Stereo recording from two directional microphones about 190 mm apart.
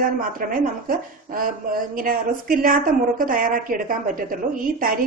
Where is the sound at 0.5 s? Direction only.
50° right (ahead or behind).